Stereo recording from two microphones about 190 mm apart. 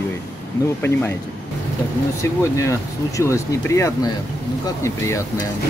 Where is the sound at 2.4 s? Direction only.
15° left (ahead or behind).